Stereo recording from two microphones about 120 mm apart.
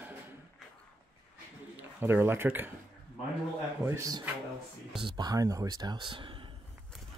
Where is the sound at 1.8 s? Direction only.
20° right (ahead or behind).